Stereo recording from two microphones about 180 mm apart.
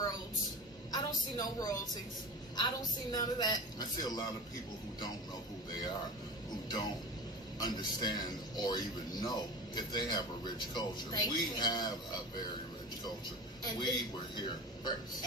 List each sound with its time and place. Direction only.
0.9 s a sound: 20° left (ahead or behind)
2.5 s a man's voice: 20° left (ahead or behind)
7.5 s a man's voice: 25° left (ahead or behind)
13.7 s a man's voice: 25° left (ahead or behind)